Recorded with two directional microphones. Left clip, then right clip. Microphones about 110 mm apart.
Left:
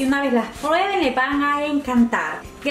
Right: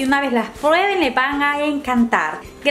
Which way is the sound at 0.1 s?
45° right (ahead or behind).